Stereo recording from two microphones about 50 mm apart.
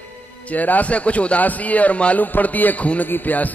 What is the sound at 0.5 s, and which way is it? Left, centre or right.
A man's voice, left.